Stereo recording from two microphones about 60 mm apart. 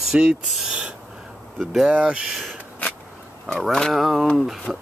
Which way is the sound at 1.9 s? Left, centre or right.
Centre.